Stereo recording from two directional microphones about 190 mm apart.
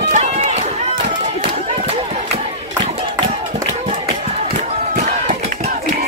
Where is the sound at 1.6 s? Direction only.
35° right (ahead or behind).